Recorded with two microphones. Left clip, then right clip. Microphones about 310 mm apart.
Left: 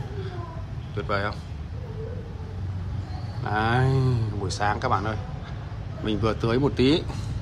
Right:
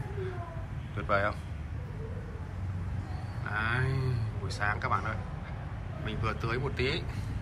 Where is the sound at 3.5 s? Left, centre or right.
Centre.